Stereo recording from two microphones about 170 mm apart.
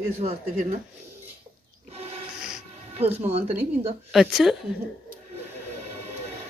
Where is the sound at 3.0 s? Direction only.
35° right (ahead or behind).